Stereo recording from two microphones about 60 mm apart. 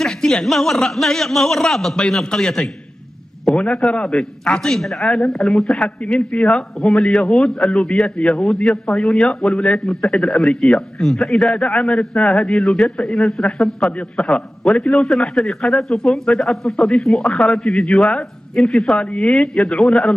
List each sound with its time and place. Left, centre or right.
0.0 s a man's voice: centre
3.5 s a man's voice: centre
11.4 s a man's voice: centre
14.2 s a man's voice: centre
18.9 s a man's voice: centre